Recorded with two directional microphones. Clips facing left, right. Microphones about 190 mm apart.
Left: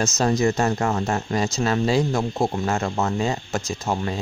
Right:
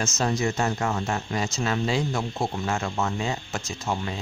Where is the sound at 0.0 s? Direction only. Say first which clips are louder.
Left 5 dB; 40° left (ahead or behind).